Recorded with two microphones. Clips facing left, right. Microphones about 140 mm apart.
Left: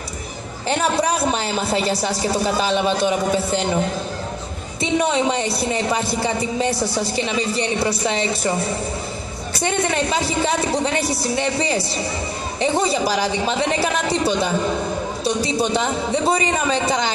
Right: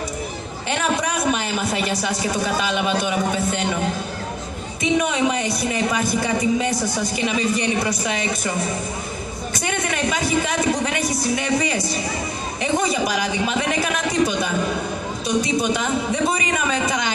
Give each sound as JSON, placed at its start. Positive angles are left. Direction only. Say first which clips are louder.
{"t": 0.7, "sound": "speech", "louder": "left 3 dB", "side_deg": 30}
{"t": 5.0, "sound": "speech", "louder": "left 2 dB", "side_deg": 30}